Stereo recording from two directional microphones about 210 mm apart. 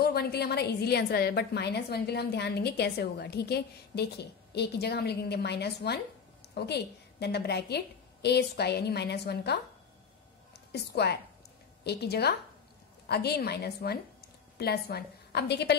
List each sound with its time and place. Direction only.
0.0 s a woman's voice: 50° left (ahead or behind)
10.7 s a woman's voice: 50° left (ahead or behind)